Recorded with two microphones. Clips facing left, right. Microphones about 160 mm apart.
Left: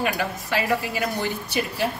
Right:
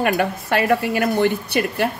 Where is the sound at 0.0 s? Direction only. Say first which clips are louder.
Right 6 dB; 60° right (ahead or behind).